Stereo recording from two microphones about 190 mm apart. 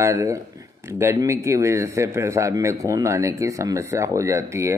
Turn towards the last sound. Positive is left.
turn(degrees=-15)  # may be behind; listen again after turning